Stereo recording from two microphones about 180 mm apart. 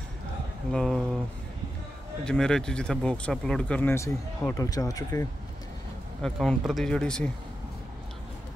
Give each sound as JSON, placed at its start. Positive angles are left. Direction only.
{"t": 0.7, "sound": "speech", "side_deg": 0}
{"t": 2.2, "sound": "speech", "side_deg": 5}
{"t": 6.2, "sound": "speech", "side_deg": 5}